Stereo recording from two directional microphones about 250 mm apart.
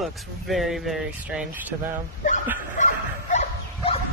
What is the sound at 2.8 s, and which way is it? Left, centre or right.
Dog, left.